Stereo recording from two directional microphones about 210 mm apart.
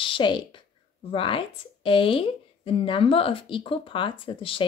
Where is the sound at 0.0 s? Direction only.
25° left (ahead or behind).